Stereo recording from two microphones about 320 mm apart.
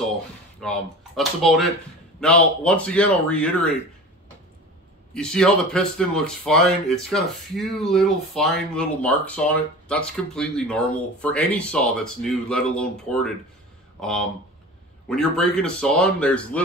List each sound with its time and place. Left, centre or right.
0.6 s speech: centre
5.1 s speech: centre
15.0 s speech: centre